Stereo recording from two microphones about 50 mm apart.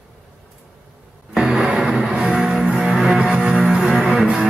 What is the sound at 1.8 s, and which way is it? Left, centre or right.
Music, centre.